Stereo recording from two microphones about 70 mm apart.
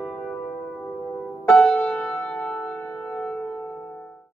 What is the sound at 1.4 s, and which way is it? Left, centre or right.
Music, centre.